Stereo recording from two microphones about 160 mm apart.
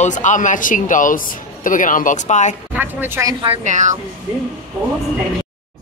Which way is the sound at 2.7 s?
15° right (ahead or behind).